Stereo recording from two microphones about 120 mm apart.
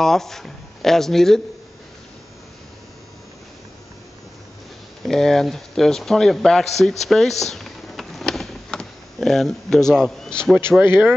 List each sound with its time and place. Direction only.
0.0 s speech: 5° left (ahead or behind)
5.0 s a man's voice: 5° left (ahead or behind)
10.8 s speech: 20° right (ahead or behind)